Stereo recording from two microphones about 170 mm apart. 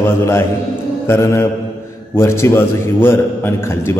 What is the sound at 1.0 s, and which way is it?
Mantra, 15° left (ahead or behind).